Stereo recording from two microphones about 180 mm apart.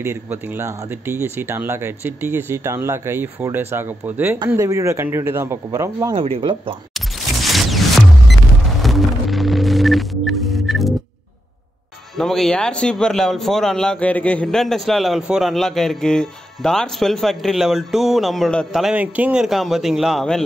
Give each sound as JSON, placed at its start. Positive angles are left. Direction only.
{"t": 0.0, "sound": "speech", "side_deg": -15}
{"t": 6.1, "sound": "speech", "side_deg": -30}
{"t": 7.4, "sound": "music", "side_deg": 0}
{"t": 8.8, "sound": "a sound", "side_deg": 0}
{"t": 12.2, "sound": "speech", "side_deg": 0}